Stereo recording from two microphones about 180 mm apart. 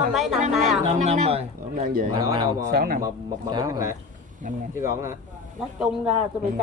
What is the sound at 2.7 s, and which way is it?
Speech, 55° right (ahead or behind).